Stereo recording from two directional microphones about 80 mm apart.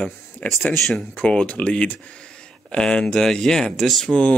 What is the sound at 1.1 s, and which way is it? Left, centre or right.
Speech, centre.